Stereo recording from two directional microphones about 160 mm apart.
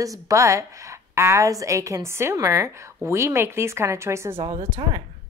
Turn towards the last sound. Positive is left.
turn(degrees=-35)  # may be behind; listen again after turning